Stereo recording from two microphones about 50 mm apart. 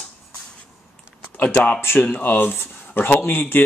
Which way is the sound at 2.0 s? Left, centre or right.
Left.